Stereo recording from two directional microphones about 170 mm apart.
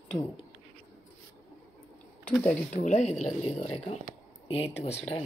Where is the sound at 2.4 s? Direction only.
40° left (ahead or behind).